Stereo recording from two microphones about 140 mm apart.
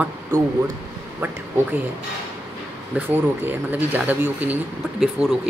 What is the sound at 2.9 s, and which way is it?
Speech, 15° right (ahead or behind).